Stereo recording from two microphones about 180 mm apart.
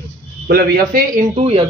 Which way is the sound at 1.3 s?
35° right (ahead or behind).